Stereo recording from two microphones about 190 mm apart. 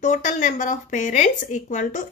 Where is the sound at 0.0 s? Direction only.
40° left (ahead or behind).